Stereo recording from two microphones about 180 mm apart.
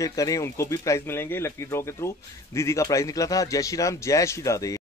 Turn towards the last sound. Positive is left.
turn(degrees=20)  # may be behind; listen again after turning